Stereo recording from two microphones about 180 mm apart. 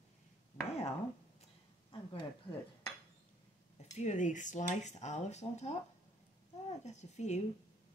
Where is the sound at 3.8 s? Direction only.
40° left (ahead or behind).